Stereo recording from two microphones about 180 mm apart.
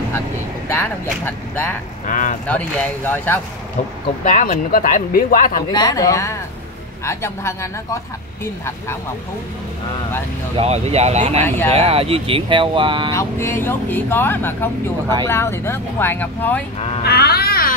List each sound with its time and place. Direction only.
0.7 s speech: 10° left (ahead or behind)
2.0 s speech: 45° left (ahead or behind)
2.4 s speech: 5° left (ahead or behind)
4.2 s speech: 50° left (ahead or behind)
5.7 s a woman's voice: 20° left (ahead or behind)
10.5 s speech: 35° right (ahead or behind)
11.4 s speech: 10° left (ahead or behind)
11.7 s speech: 35° right (ahead or behind)
13.1 s speech: 15° left (ahead or behind)
17.0 s speech: 60° left (ahead or behind)